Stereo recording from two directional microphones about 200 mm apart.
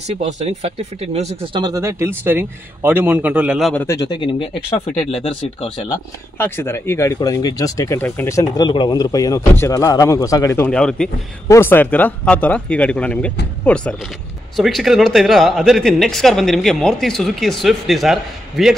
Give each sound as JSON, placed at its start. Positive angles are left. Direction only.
{"t": 0.1, "sound": "speech", "side_deg": -35}
{"t": 1.6, "sound": "a man's voice", "side_deg": -15}
{"t": 3.8, "sound": "speech", "side_deg": 15}
{"t": 5.9, "sound": "speech", "side_deg": 10}